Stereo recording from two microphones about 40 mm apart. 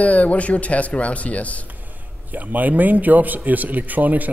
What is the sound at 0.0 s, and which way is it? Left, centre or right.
Speech, left.